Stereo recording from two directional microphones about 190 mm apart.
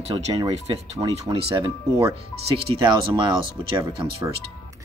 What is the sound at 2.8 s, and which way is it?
Speech, 25° right (ahead or behind).